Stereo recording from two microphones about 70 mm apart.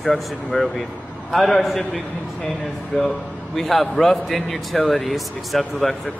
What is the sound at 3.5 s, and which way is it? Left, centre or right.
A man's voice, centre.